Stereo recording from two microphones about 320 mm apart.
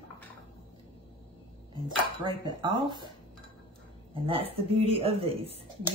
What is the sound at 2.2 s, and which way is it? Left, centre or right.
Speech, centre.